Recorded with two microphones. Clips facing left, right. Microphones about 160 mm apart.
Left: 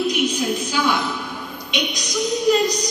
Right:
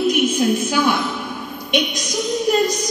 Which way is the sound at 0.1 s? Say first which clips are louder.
Right 4 dB; 50° right (ahead or behind).